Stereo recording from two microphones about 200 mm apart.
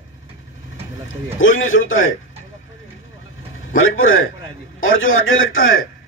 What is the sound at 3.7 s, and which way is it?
A man's voice, 85° left.